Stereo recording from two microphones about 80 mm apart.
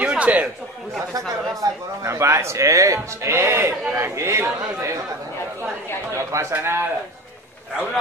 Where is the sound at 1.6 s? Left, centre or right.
Right.